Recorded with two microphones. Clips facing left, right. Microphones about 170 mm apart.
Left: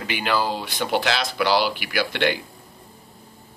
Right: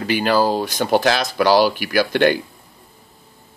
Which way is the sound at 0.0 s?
40° right (ahead or behind).